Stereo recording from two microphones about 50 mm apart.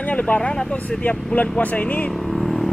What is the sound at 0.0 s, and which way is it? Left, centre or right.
Speech, left.